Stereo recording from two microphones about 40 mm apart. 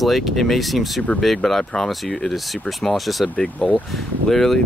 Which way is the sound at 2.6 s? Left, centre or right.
Centre.